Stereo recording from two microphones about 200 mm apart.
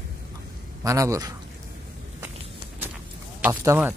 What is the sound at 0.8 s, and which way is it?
Speech, 15° right (ahead or behind).